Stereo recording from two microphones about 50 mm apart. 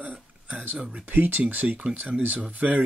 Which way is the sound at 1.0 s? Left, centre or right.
Right.